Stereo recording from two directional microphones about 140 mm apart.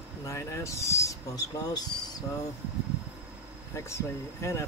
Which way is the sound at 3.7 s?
20° left (ahead or behind).